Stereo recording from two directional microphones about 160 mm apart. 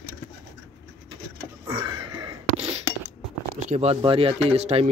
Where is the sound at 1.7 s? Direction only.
30° right (ahead or behind).